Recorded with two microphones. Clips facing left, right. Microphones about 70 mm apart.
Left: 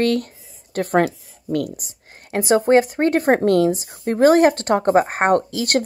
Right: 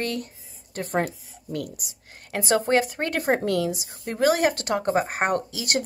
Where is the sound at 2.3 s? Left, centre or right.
Left.